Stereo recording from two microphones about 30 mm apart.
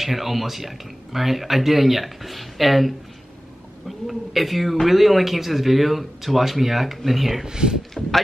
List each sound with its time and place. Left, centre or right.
0.0 s speech: centre
4.1 s speech: centre
7.4 s speech: right